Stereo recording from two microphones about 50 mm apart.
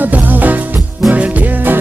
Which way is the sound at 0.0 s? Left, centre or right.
Right.